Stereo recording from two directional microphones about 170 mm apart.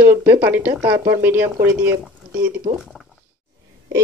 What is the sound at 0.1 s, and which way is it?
Speech, 10° right (ahead or behind).